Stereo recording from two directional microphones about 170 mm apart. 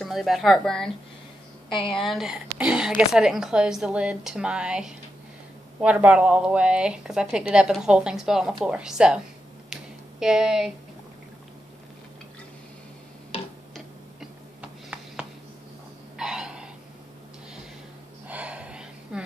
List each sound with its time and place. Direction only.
0.0 s a woman's voice: centre (ahead or behind)
1.7 s a woman's voice: 30° left (ahead or behind)
2.0 s a woman's voice: centre (ahead or behind)
10.2 s a woman's voice: 5° right (ahead or behind)
14.6 s a sound: 5° right (ahead or behind)
18.3 s gasp: 5° right (ahead or behind)